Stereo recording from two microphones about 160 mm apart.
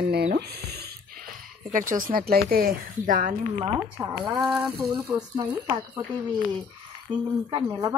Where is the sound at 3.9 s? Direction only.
10° right (ahead or behind).